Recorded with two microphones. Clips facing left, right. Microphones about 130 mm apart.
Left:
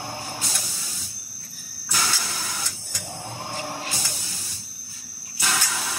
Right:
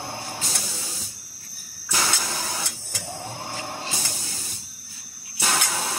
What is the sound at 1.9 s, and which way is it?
Vehicle, 25° right (ahead or behind).